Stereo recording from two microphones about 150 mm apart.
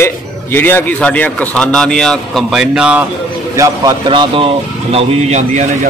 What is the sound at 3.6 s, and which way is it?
A man's voice, 25° right (ahead or behind).